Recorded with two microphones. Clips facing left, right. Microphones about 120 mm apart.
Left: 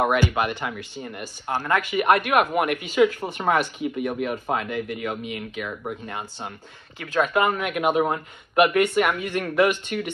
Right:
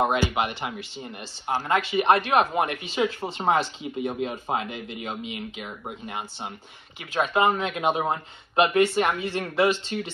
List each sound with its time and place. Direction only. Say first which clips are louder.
0.0 s speech: left 2 dB; 20° right (ahead or behind)